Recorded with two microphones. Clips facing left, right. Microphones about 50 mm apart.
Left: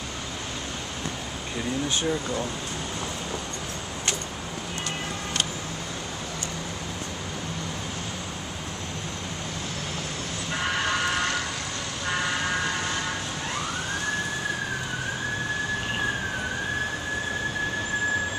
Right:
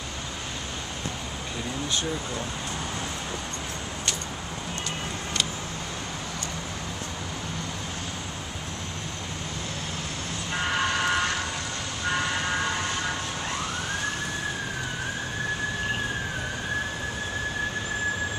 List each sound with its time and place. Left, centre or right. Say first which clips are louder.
1.9 s speech: left 3 dB; left